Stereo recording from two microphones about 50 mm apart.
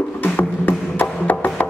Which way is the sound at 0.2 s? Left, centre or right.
Left.